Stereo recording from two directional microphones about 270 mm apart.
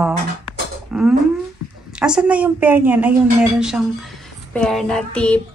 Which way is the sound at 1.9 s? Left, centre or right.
Centre.